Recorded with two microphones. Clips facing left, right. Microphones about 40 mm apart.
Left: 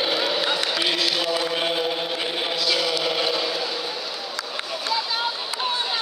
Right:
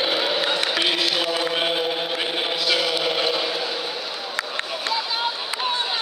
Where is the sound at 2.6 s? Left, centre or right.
Centre.